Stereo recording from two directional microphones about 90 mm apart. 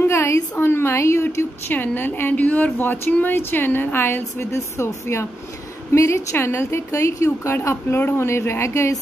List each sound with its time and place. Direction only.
0.0 s a woman's voice: 30° left (ahead or behind)